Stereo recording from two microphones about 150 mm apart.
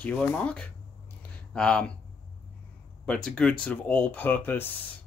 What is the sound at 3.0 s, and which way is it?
Speech, 5° left (ahead or behind).